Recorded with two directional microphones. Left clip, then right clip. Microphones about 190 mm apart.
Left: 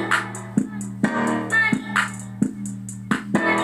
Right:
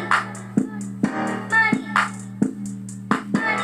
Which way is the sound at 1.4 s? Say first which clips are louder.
Right 4 dB; 20° left (ahead or behind).